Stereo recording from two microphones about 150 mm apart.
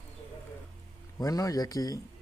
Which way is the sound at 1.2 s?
25° left (ahead or behind).